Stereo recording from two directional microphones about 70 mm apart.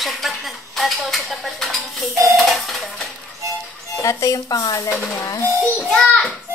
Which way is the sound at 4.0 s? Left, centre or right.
Left.